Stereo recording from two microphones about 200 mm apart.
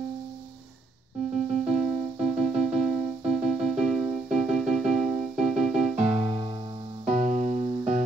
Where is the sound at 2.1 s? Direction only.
35° right (ahead or behind).